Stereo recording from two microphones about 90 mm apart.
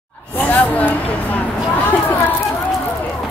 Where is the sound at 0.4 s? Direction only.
20° left (ahead or behind).